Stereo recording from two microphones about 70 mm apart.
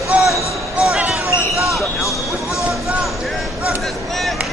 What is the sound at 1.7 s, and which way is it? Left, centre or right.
Vehicle, centre.